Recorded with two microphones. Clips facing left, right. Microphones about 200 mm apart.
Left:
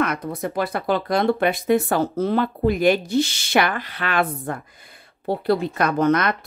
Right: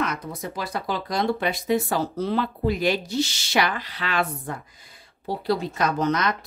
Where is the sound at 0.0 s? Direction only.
55° left (ahead or behind).